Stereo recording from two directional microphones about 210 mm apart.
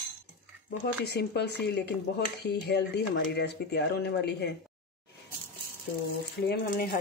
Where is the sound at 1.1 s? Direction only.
50° left (ahead or behind).